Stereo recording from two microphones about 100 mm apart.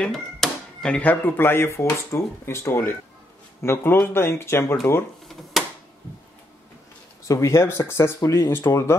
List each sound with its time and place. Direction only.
0.0 s speech: 5° left (ahead or behind); by 4.7 s 25° left (ahead or behind)
7.2 s speech: 30° left (ahead or behind)